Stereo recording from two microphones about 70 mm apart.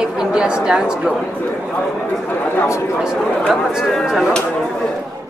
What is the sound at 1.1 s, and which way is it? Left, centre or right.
A man's voice, left.